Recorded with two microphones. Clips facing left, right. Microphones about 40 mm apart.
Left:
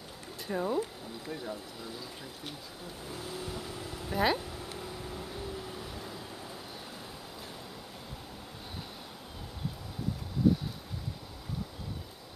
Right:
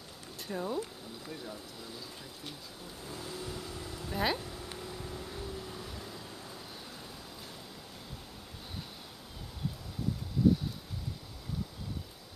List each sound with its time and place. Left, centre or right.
0.5 s speech: centre
3.2 s speech: centre
4.2 s a sound: centre